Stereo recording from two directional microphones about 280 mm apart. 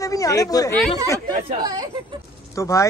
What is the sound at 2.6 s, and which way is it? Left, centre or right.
Speech, centre.